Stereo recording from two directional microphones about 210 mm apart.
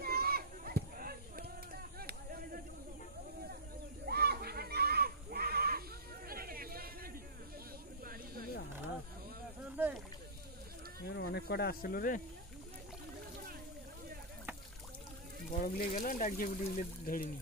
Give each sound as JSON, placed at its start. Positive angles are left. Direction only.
{"t": 0.0, "sound": "a sound", "side_deg": -45}
{"t": 4.0, "sound": "goat", "side_deg": -50}
{"t": 8.0, "sound": "snake", "side_deg": -45}
{"t": 9.8, "sound": "rowboat", "side_deg": -10}
{"t": 11.1, "sound": "snake", "side_deg": 55}
{"t": 15.6, "sound": "speech", "side_deg": 40}